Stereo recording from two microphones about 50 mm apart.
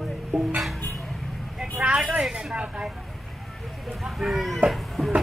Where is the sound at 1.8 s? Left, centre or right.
Centre.